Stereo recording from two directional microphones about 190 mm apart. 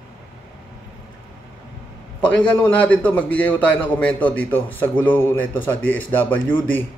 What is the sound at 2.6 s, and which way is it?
A man's voice, 10° left (ahead or behind).